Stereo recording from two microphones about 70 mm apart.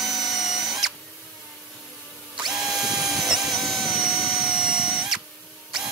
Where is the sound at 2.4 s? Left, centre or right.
Centre.